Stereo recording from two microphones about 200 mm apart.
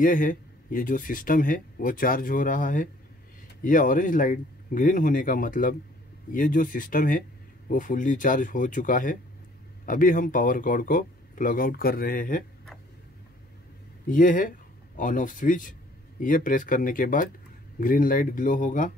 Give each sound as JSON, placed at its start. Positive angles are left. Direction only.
{"t": 0.0, "sound": "speech", "side_deg": 40}
{"t": 14.0, "sound": "speech", "side_deg": 40}